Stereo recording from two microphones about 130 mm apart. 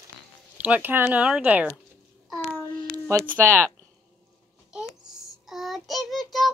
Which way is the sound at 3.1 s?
20° right (ahead or behind).